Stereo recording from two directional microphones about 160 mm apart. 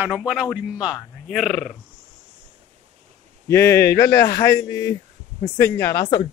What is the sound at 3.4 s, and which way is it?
A man's voice, 15° left (ahead or behind).